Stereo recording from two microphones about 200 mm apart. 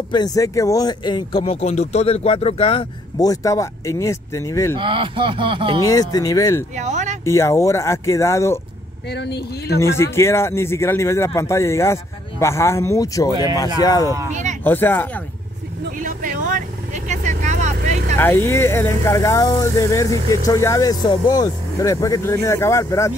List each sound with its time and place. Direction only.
0.1 s speech: 20° left (ahead or behind)
3.3 s speech: 15° left (ahead or behind)
4.7 s speech: 25° right (ahead or behind)
5.8 s speech: 20° left (ahead or behind)
6.8 s speech: 35° right (ahead or behind)
7.2 s speech: 15° left (ahead or behind)
9.1 s speech: 55° left (ahead or behind)
9.8 s speech: 15° left (ahead or behind)
14.3 s speech: 35° right (ahead or behind)
14.6 s speech: 10° left (ahead or behind)
16.0 s vehicle: 40° right (ahead or behind)
18.2 s speech: 10° left (ahead or behind)